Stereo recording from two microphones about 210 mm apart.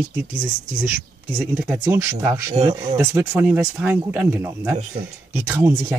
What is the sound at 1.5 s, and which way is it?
Speech, 10° right (ahead or behind).